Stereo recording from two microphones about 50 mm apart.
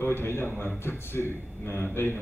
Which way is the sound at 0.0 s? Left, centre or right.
Left.